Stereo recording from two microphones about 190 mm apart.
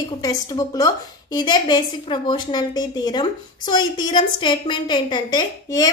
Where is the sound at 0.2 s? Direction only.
20° left (ahead or behind).